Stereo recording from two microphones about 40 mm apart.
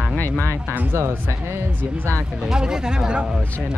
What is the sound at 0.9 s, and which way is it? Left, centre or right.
Speech, right.